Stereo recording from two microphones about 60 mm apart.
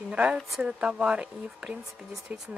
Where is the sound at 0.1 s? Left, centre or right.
Right.